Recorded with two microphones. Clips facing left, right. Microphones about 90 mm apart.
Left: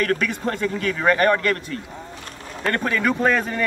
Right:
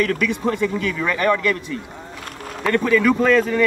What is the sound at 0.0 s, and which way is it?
Speech, 45° left (ahead or behind).